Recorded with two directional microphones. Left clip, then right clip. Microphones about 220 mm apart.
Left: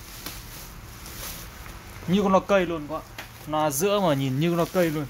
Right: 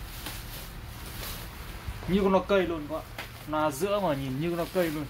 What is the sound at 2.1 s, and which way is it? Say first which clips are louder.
Speech: left 4 dB; 50° left (ahead or behind).